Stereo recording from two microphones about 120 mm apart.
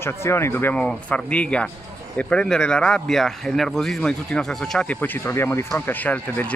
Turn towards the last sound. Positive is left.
turn(degrees=15)  # may be behind; listen again after turning